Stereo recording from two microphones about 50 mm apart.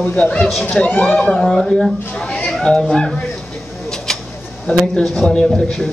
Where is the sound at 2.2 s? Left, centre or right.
Left.